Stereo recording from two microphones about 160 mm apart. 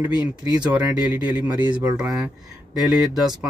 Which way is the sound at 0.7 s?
10° right (ahead or behind).